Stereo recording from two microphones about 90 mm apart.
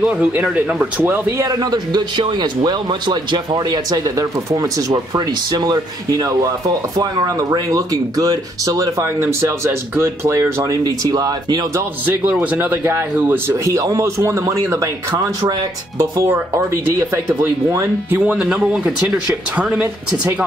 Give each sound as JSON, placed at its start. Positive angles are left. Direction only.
{"t": 0.0, "sound": "speech", "side_deg": -15}
{"t": 1.4, "sound": "speech", "side_deg": -45}
{"t": 10.6, "sound": "speech", "side_deg": -45}
{"t": 11.7, "sound": "speech", "side_deg": -20}
{"t": 13.7, "sound": "speech", "side_deg": -40}
{"t": 16.3, "sound": "speech", "side_deg": -25}
{"t": 18.2, "sound": "speech", "side_deg": -10}